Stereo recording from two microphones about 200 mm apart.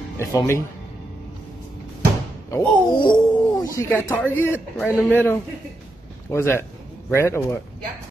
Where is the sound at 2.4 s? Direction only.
20° left (ahead or behind).